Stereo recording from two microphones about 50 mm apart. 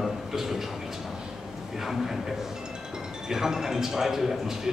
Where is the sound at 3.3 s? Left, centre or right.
Centre.